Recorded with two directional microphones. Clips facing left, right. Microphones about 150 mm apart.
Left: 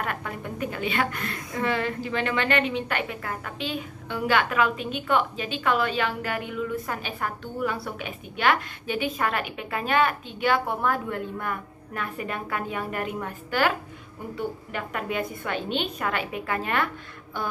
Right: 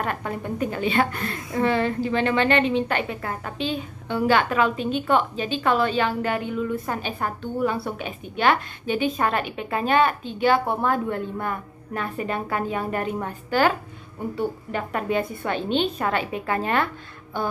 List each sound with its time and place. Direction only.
0.0 s a woman's voice: 30° right (ahead or behind)